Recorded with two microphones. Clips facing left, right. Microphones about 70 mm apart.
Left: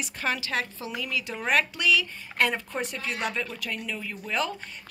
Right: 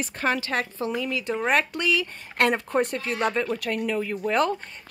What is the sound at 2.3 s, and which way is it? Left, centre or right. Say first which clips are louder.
Speech: right 4 dB; right.